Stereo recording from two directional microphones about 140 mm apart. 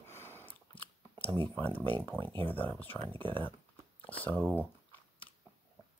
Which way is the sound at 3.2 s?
35° right (ahead or behind).